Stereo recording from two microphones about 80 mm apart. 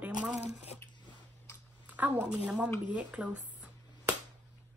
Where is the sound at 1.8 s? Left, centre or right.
Centre.